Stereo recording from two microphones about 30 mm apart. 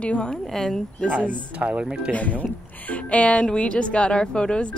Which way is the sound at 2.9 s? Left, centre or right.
Left.